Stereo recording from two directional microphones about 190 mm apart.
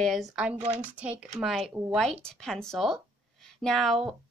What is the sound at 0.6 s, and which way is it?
Speech, 35° right (ahead or behind).